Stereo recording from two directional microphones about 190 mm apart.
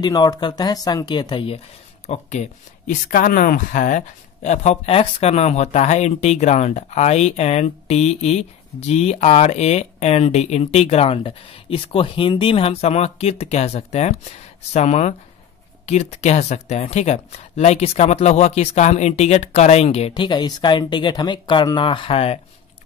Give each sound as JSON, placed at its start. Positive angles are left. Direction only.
{"t": 0.0, "sound": "speech", "side_deg": 20}